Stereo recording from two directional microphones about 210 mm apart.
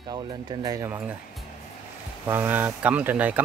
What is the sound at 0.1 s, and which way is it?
Speech, 20° right (ahead or behind).